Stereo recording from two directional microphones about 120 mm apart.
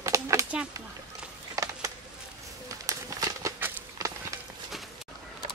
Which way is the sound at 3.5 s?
20° right (ahead or behind).